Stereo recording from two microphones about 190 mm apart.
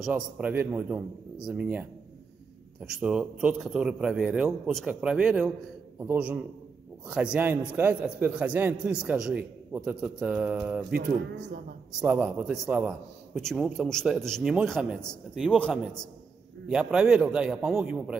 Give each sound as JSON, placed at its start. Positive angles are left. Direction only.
{"t": 0.0, "sound": "a man's voice", "side_deg": -10}
{"t": 12.0, "sound": "a man's voice", "side_deg": -10}